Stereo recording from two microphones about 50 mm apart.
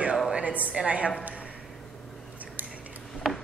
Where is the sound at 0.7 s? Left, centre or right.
Right.